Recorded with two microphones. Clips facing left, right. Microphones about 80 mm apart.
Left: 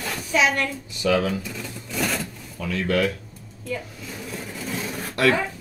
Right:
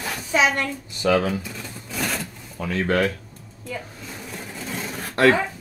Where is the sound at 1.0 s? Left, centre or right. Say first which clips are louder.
Right 1 dB; right.